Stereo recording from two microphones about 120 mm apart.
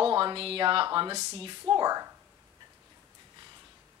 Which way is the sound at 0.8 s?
35° right (ahead or behind).